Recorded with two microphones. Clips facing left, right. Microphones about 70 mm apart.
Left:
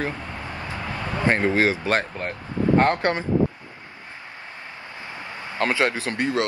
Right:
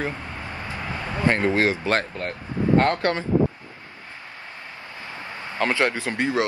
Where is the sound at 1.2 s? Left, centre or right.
Left.